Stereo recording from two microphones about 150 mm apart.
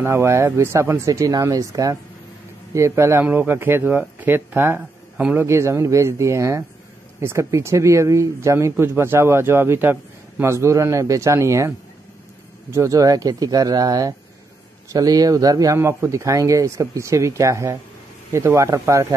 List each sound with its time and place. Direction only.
0.0 s speech: 15° right (ahead or behind)
12.7 s speech: 20° right (ahead or behind)